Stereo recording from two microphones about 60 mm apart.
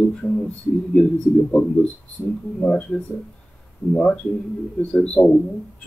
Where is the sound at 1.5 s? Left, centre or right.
Centre.